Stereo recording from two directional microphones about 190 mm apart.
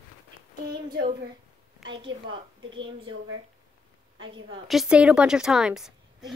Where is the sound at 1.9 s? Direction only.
25° right (ahead or behind).